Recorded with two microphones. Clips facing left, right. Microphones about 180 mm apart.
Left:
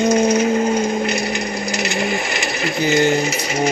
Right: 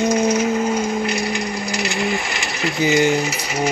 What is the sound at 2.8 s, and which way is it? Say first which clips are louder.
Speech: even; 10° right (ahead or behind).